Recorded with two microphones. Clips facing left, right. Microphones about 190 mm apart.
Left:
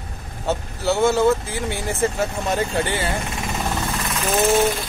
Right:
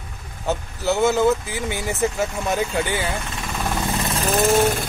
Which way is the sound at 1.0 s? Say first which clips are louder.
Left 1 dB; centre (ahead or behind).